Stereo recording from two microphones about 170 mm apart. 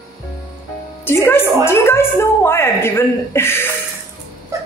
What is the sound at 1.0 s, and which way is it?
A woman's voice, 15° left (ahead or behind).